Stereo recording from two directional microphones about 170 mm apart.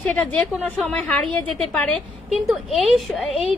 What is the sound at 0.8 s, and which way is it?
A woman's voice, 5° left (ahead or behind).